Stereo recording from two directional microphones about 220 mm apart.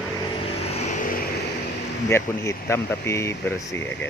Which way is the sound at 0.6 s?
30° left (ahead or behind).